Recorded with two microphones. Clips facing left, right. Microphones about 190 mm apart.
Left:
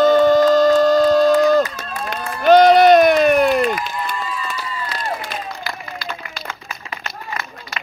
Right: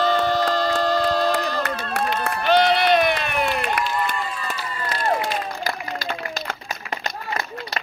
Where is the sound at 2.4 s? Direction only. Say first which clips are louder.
Left 9 dB; 45° left (ahead or behind).